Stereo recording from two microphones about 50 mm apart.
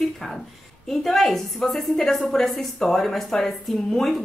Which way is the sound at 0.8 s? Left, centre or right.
Centre.